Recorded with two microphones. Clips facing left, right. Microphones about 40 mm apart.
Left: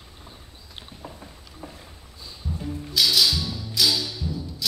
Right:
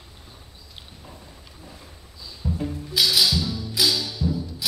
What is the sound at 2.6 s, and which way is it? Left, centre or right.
Music, centre.